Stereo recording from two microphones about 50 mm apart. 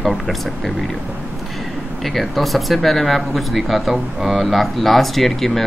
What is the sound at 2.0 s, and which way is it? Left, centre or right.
Speech, centre.